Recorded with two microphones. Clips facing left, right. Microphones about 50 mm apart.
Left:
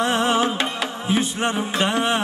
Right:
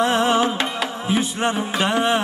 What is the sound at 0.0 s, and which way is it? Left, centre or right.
Music, centre.